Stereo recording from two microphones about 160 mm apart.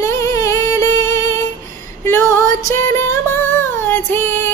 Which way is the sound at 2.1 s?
15° left (ahead or behind).